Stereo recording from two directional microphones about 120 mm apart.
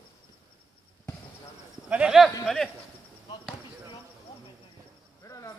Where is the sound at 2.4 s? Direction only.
Centre (ahead or behind).